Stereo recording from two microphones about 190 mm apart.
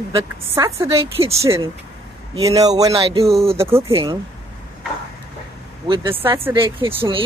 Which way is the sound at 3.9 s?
25° right (ahead or behind).